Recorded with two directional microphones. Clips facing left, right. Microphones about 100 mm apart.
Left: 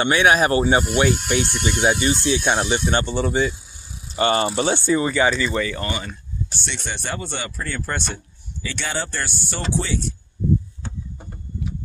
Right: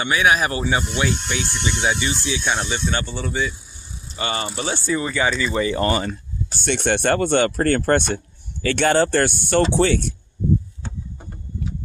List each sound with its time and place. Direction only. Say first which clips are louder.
0.0 s speech: left 2 dB; 35° left (ahead or behind)
2.7 s speech: left 4 dB; 30° left (ahead or behind)
4.2 s speech: left 6 dB; 40° left (ahead or behind)
4.8 s speech: left 1 dB; 20° left (ahead or behind)
5.4 s speech: right 2 dB; 15° right (ahead or behind)
5.8 s speech: right 7 dB; 40° right (ahead or behind); by 10.1 s 60° right (ahead or behind)